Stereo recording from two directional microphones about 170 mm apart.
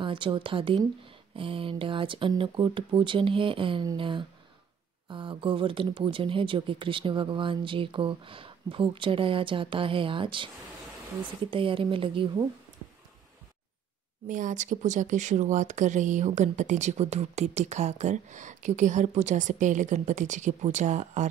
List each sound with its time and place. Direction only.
0.0 s speech: 30° right (ahead or behind)
11.5 s speech: 30° right (ahead or behind)
14.2 s speech: 50° right (ahead or behind)